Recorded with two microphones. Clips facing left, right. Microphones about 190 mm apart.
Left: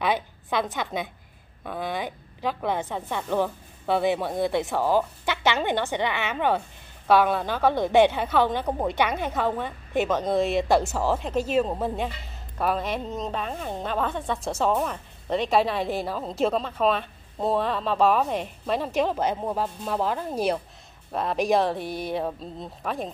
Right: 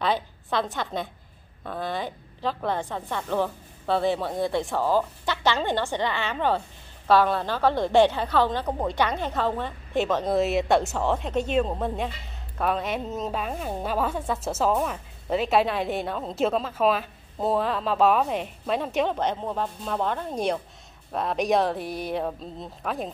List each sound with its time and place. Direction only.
0.0 s a woman's voice: 15° left (ahead or behind)
10.0 s a woman's voice: centre (ahead or behind)